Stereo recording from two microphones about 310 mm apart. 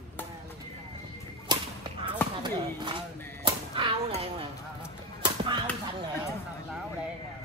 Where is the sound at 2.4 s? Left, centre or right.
Centre.